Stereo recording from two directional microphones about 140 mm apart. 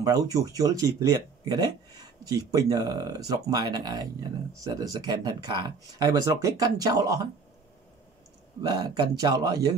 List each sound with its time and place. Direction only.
0.0 s speech: 25° right (ahead or behind)
8.6 s speech: 30° right (ahead or behind)